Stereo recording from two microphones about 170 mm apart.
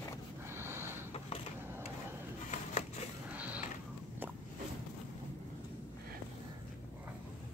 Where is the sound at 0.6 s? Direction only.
15° right (ahead or behind).